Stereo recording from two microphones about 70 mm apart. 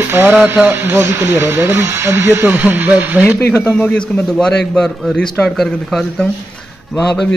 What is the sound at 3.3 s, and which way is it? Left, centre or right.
Speech, left.